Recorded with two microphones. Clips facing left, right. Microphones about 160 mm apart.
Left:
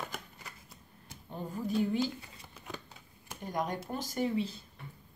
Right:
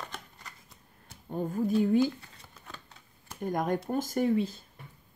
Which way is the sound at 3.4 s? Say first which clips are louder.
Right 6 dB; 50° right (ahead or behind).